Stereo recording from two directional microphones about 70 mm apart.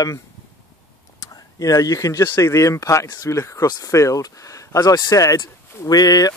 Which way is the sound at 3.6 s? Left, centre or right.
Left.